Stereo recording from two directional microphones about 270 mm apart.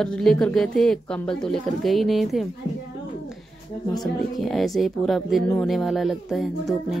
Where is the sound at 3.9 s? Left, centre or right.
Centre.